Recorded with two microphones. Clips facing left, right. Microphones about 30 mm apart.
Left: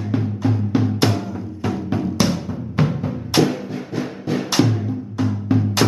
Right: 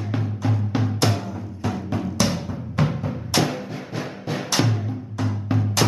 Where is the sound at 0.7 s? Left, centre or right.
Centre.